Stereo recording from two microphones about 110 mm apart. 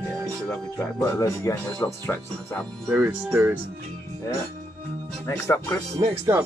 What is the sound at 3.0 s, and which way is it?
Speech, 15° right (ahead or behind).